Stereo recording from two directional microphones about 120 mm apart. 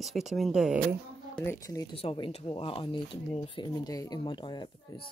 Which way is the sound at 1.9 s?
45° left (ahead or behind).